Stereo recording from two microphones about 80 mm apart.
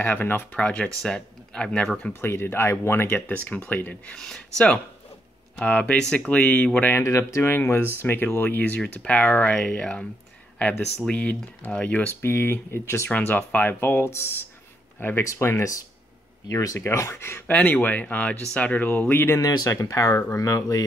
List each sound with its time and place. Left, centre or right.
0.0 s speech: left
2.1 s speech: left
7.0 s speech: left
9.6 s speech: centre
11.1 s speech: centre
12.2 s speech: left
13.1 s speech: centre
13.7 s speech: left
16.4 s speech: left
17.5 s speech: centre
19.3 s speech: left